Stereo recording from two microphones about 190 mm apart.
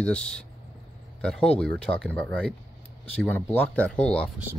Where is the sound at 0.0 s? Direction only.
5° left (ahead or behind).